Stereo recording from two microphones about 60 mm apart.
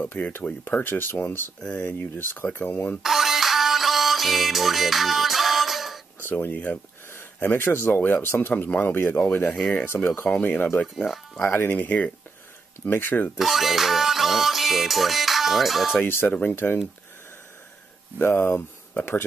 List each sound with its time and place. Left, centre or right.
0.0 s speech: left
1.6 s speech: centre
2.1 s speech: left
3.0 s music: centre
6.4 s speech: left
11.4 s speech: left
13.4 s music: centre
15.9 s speech: left
18.2 s speech: left